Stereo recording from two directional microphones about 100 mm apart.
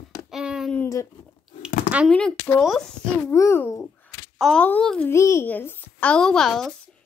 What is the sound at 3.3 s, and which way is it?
Speech, 25° left (ahead or behind).